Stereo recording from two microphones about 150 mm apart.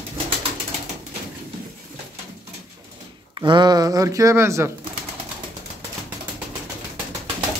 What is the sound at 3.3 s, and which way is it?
Speech, 30° right (ahead or behind).